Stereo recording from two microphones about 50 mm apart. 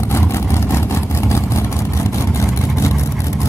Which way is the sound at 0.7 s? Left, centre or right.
Left.